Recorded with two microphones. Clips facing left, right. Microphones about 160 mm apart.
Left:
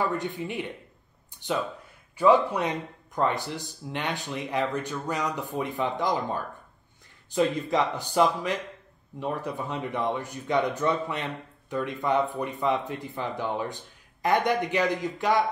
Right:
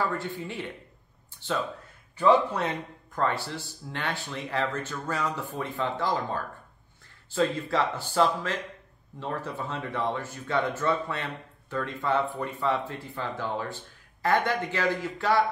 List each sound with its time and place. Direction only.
0.0 s speech: 20° left (ahead or behind)